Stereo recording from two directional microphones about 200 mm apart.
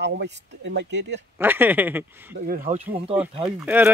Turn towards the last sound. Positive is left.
turn(degrees=-10)  # may be behind; listen again after turning